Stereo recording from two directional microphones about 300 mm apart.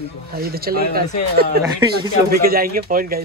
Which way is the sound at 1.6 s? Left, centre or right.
Centre.